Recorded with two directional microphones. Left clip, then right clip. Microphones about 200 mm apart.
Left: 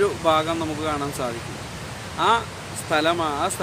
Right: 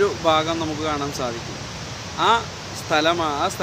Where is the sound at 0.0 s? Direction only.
5° right (ahead or behind).